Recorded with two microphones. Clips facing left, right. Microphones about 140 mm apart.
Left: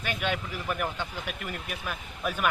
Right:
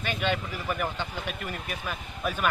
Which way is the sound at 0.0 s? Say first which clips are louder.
Right 2 dB; 10° left (ahead or behind).